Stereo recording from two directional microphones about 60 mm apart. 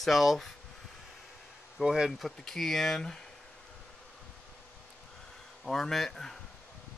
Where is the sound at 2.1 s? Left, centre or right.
Centre.